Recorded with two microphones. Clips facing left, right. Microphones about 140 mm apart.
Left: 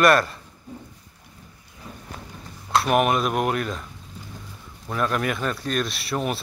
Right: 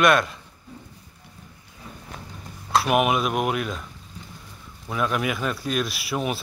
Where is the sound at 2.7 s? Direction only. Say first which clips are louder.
Left 1 dB; 5° right (ahead or behind).